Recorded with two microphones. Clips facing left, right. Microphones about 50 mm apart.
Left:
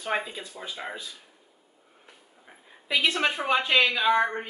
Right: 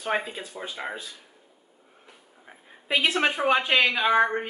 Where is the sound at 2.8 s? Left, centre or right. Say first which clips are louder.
Right 1 dB; right.